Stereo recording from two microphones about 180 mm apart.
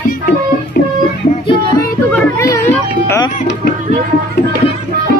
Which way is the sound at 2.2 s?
15° left (ahead or behind).